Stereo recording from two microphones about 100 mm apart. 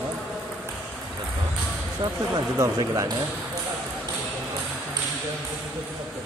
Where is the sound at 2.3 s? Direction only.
40° right (ahead or behind).